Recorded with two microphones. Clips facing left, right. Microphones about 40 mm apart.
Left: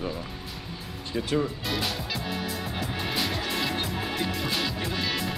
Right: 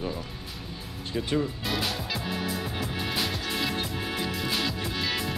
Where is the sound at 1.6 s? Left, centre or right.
Centre.